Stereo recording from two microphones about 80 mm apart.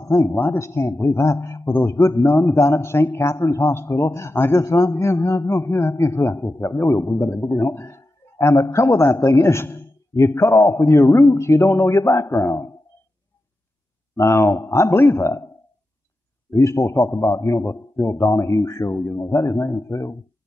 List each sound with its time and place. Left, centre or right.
0.0 s a man's voice: left
14.1 s a man's voice: left
16.5 s a man's voice: left